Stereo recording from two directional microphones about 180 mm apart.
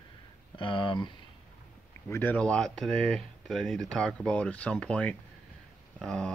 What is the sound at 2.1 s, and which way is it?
Speech, 10° left (ahead or behind).